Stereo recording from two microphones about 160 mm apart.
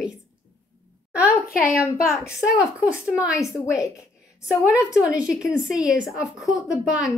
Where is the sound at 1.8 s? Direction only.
20° left (ahead or behind).